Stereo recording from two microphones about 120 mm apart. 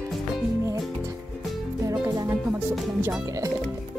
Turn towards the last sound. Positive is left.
turn(degrees=-25)  # may be behind; listen again after turning